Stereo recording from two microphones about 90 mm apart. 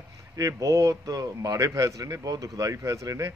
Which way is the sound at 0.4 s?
40° right (ahead or behind).